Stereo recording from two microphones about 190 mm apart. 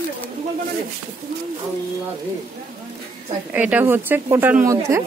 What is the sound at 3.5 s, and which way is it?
A woman's voice, 10° right (ahead or behind).